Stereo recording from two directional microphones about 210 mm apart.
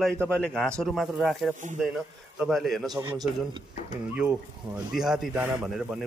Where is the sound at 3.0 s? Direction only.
20° right (ahead or behind).